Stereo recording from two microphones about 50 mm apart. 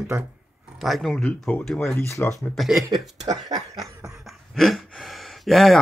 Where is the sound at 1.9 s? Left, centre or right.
Left.